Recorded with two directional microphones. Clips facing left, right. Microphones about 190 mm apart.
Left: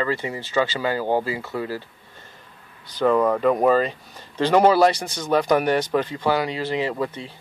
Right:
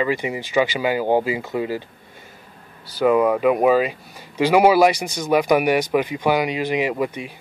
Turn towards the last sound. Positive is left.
turn(degrees=-15)  # may be behind; listen again after turning